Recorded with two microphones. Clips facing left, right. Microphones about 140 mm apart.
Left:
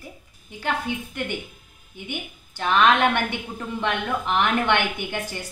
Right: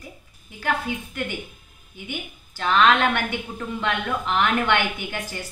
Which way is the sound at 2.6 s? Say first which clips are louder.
Even; 15° left (ahead or behind).